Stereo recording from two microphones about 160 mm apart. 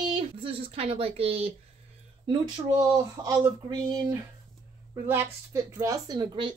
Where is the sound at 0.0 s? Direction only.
30° right (ahead or behind).